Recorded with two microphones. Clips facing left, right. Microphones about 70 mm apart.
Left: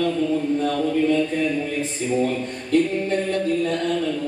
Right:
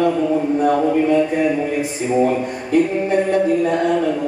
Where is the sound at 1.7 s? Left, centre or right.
Centre.